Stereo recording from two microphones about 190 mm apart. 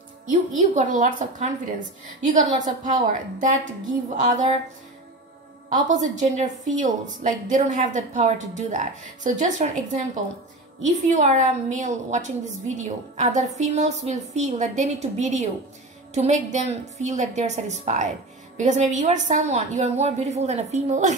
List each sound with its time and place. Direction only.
0.3 s a woman's voice: 40° right (ahead or behind)
5.7 s a woman's voice: 40° right (ahead or behind)
11.1 s a woman's voice: 40° right (ahead or behind)